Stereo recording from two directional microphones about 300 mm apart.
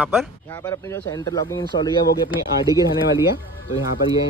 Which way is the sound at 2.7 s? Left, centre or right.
Centre.